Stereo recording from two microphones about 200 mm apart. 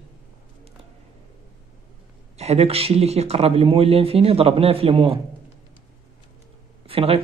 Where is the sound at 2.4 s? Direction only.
30° right (ahead or behind).